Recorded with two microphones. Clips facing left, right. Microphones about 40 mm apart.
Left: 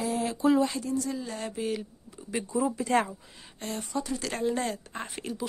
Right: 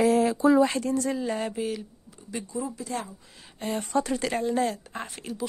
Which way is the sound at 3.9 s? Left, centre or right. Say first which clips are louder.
Right 6 dB; right.